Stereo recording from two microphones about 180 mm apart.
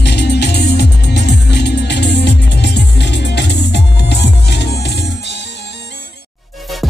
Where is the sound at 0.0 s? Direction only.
65° left (ahead or behind).